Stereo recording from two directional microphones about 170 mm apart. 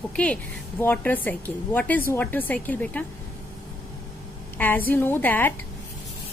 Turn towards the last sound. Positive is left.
turn(degrees=10)  # may be behind; listen again after turning